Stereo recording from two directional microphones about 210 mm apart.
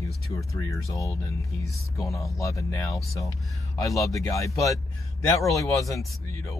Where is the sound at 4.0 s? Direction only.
15° left (ahead or behind).